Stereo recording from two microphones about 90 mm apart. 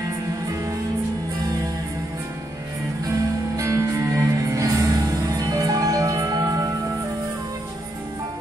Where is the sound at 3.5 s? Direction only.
35° right (ahead or behind).